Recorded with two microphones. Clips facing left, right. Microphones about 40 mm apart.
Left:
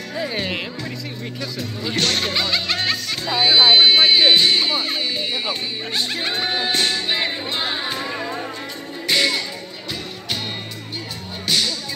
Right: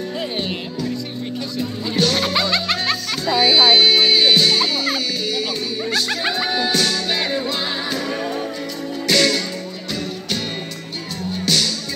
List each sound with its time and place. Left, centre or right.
2.0 s music: left
3.3 s music: left
6.3 s music: left
9.0 s music: left
11.4 s music: centre